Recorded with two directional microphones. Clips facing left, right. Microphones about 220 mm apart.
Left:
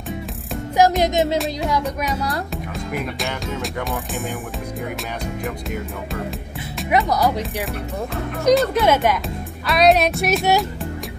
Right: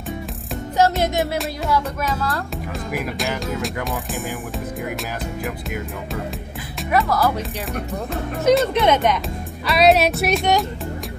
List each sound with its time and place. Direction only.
0.7 s music: 15° left (ahead or behind)
1.7 s speech: 15° left (ahead or behind)
2.9 s music: centre (ahead or behind)
7.1 s speech: 15° left (ahead or behind)
8.1 s music: centre (ahead or behind)